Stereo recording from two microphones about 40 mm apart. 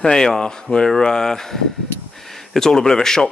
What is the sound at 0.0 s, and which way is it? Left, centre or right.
Speech, centre.